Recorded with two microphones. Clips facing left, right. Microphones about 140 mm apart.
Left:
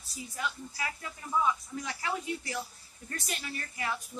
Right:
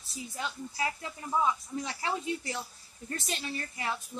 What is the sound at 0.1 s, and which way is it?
A woman's voice, 30° right (ahead or behind).